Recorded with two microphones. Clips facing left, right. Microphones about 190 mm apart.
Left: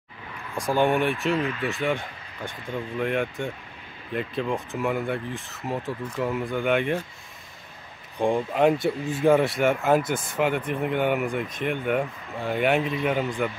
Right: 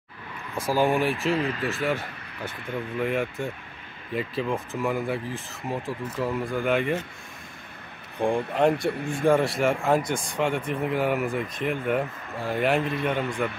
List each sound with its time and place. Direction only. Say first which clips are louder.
0.6 s speech: left 1 dB; centre (ahead or behind)
1.3 s speech: even; 35° right (ahead or behind)
1.6 s speech: even; centre (ahead or behind)
8.2 s speech: left 1 dB; centre (ahead or behind)